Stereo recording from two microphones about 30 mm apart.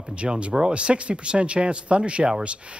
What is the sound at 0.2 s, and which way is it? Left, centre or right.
Speech, right.